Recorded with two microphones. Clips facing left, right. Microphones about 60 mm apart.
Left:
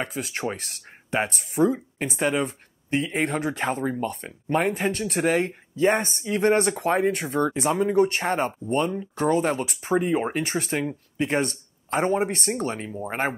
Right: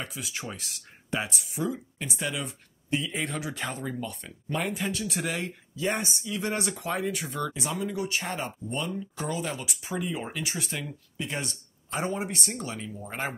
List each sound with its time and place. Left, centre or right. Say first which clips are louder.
0.0 s speech: left 8 dB; left